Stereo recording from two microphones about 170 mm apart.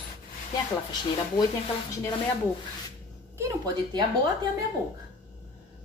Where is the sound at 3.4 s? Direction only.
25° right (ahead or behind).